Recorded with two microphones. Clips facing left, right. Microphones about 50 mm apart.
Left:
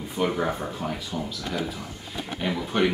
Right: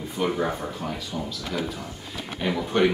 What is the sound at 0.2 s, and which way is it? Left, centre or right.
Speech, centre.